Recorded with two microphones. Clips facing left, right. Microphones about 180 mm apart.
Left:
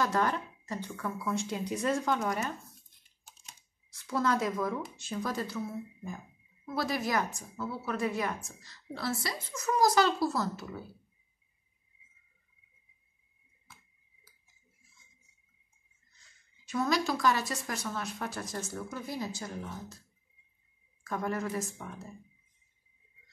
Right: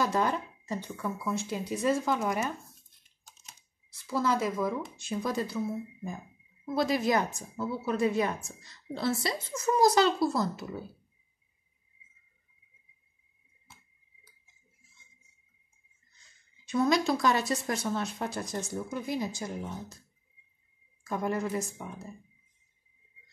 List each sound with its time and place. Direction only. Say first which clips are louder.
0.0 s speech: right 1 dB; 10° right (ahead or behind)
3.3 s speech: even; centre (ahead or behind)
6.6 s speech: right 5 dB; 20° right (ahead or behind)
16.7 s speech: right 4 dB; 20° right (ahead or behind)
21.0 s speech: right 3 dB; 15° right (ahead or behind)